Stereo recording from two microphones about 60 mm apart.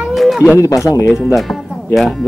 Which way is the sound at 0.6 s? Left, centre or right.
Left.